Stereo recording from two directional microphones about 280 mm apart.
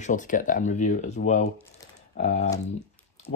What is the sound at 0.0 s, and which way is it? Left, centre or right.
Speech, left.